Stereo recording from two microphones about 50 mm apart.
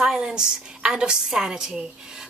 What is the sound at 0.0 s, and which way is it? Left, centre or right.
A woman's voice, centre.